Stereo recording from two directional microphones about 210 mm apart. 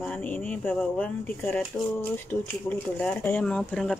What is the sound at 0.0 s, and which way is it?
Speech, 5° left (ahead or behind).